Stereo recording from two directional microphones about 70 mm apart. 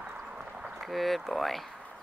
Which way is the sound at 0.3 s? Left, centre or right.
Centre.